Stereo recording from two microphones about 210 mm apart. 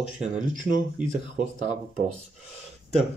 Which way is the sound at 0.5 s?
40° right (ahead or behind).